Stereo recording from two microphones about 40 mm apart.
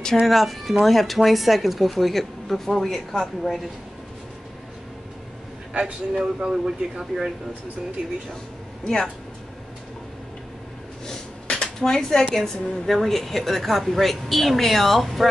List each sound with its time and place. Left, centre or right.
0.3 s a woman's voice: centre
5.7 s speech: right
8.8 s speech: centre
11.1 s a sound: centre
12.3 s a woman's voice: centre